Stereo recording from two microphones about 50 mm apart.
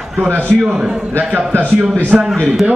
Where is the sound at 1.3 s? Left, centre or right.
Right.